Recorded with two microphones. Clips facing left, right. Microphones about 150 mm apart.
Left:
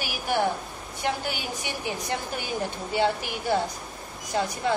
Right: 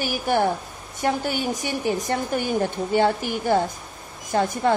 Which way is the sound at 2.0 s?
50° right (ahead or behind).